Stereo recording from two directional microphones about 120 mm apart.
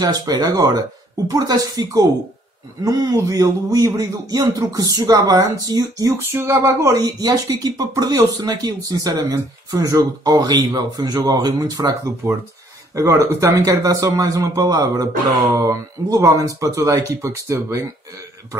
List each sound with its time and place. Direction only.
0.0 s speech: 35° right (ahead or behind)
6.1 s speech: 20° right (ahead or behind)